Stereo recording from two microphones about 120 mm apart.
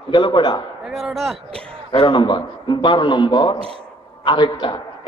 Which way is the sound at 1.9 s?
45° left (ahead or behind).